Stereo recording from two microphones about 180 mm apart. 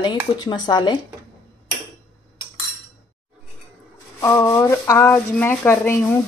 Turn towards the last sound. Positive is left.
turn(degrees=10)  # may be behind; listen again after turning